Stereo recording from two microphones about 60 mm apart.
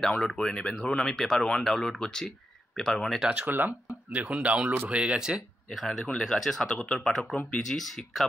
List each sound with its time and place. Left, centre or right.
0.0 s speech: centre
3.3 s speech: right
5.8 s speech: centre